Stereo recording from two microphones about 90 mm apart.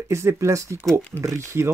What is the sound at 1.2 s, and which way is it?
Speech, 30° right (ahead or behind).